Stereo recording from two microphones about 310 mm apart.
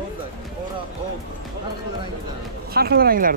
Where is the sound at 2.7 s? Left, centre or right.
Right.